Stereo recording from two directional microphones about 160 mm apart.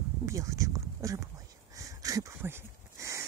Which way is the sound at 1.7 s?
20° right (ahead or behind).